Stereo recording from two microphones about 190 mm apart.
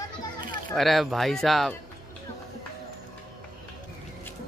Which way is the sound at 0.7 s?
Centre (ahead or behind).